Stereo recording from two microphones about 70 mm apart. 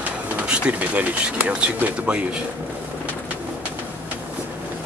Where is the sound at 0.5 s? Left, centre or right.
Centre.